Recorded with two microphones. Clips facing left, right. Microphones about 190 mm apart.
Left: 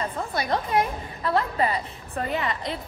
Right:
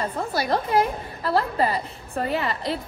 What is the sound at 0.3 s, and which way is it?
A woman's voice, 30° right (ahead or behind).